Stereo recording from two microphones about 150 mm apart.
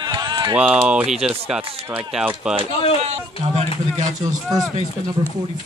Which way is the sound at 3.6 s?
55° right (ahead or behind).